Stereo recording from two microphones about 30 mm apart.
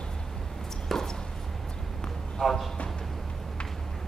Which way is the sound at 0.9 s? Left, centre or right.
Centre.